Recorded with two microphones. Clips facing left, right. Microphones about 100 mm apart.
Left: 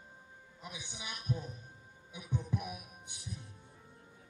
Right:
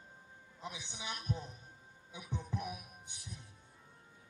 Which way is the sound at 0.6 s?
10° left (ahead or behind).